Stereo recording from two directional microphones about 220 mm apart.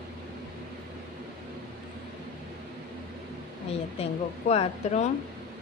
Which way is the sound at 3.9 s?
25° left (ahead or behind).